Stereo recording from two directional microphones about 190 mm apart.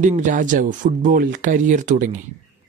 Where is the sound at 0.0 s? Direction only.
40° right (ahead or behind).